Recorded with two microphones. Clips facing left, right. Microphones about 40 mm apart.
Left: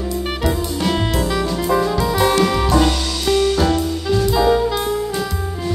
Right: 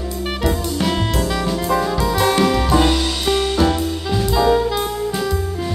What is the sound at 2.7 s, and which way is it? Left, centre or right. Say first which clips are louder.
Music: right 1 dB; centre.